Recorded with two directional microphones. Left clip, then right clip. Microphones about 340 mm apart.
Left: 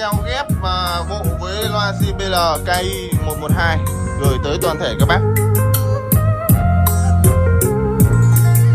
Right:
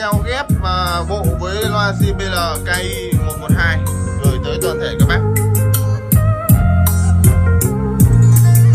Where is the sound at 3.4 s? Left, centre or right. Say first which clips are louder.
Right 1 dB; centre.